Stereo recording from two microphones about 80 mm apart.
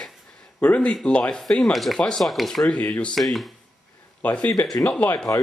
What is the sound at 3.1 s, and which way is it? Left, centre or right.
Speech, centre.